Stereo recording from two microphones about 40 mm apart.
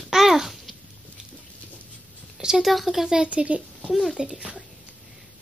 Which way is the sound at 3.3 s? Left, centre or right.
Right.